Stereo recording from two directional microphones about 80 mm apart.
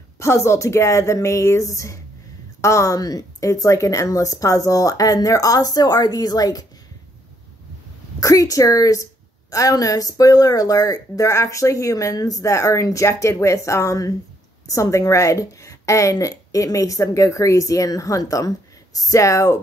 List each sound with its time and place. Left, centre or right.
0.2 s a woman's voice: left
8.2 s a woman's voice: left